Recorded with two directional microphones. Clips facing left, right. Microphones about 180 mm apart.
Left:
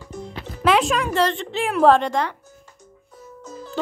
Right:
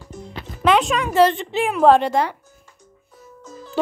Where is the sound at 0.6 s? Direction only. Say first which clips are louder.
Right 1 dB; centre (ahead or behind).